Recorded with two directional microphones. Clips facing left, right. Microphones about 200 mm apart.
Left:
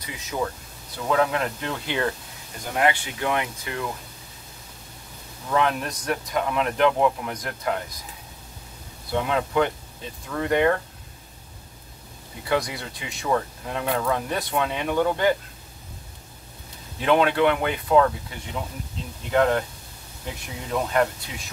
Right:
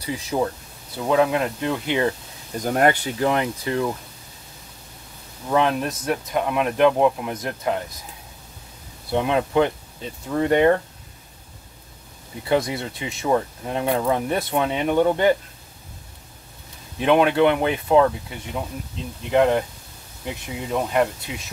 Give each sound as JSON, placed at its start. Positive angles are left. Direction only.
{"t": 0.0, "sound": "speech", "side_deg": -30}
{"t": 0.9, "sound": "speech", "side_deg": -20}
{"t": 2.6, "sound": "speech", "side_deg": -45}
{"t": 5.5, "sound": "speech", "side_deg": -30}
{"t": 9.1, "sound": "speech", "side_deg": -25}
{"t": 12.4, "sound": "speech", "side_deg": -25}
{"t": 17.0, "sound": "speech", "side_deg": -20}
{"t": 19.3, "sound": "speech", "side_deg": -15}
{"t": 20.7, "sound": "speech", "side_deg": -15}